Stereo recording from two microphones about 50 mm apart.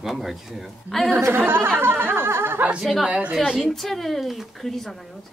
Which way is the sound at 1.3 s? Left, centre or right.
Right.